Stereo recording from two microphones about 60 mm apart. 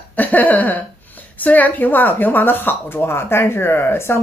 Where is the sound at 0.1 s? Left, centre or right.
Left.